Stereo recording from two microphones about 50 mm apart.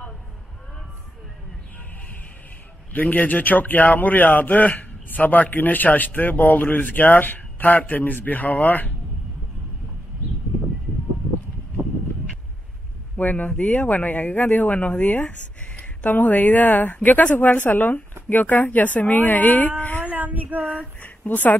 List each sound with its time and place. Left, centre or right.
2.9 s a man's voice: left
13.2 s a man's voice: left
20.1 s female singing: right
20.6 s speech: left